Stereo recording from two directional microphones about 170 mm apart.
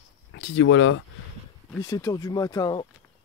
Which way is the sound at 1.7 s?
20° left (ahead or behind).